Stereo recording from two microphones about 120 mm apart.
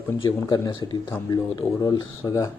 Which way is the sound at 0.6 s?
40° left (ahead or behind).